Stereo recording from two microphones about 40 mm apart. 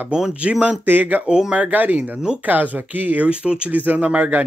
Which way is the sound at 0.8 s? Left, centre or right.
Right.